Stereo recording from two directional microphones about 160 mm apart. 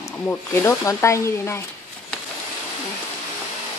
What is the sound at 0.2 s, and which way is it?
Speech, 15° left (ahead or behind).